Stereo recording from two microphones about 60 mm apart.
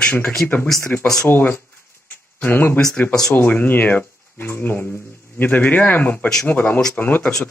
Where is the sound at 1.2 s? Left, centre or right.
Left.